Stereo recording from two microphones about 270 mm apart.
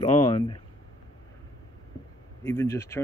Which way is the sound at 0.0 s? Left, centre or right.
Left.